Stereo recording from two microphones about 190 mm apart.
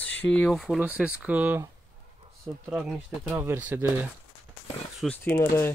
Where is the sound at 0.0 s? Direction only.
10° left (ahead or behind); by 4.1 s 10° right (ahead or behind).